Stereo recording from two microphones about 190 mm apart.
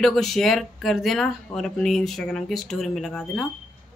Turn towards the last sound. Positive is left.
turn(degrees=0)  # may be behind; listen again after turning